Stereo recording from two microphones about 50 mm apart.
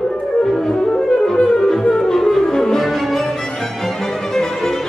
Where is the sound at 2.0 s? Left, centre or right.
Centre.